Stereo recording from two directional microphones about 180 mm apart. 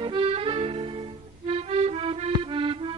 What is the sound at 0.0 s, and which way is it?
Accordion, 30° right (ahead or behind).